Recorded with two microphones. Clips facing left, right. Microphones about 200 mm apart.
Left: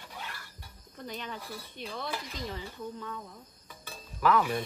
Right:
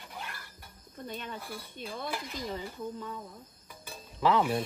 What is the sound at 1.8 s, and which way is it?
Speech, 5° right (ahead or behind).